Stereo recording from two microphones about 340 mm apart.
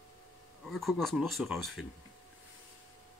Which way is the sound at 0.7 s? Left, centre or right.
Centre.